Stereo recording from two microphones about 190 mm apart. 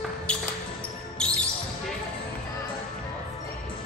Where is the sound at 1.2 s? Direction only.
5° left (ahead or behind).